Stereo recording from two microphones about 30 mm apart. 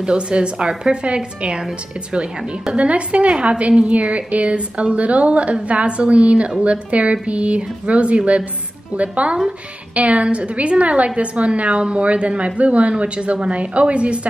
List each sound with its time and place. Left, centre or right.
0.0 s a woman's voice: right
2.7 s a woman's voice: right